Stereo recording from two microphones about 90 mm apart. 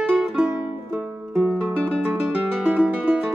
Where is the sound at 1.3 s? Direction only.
5° left (ahead or behind).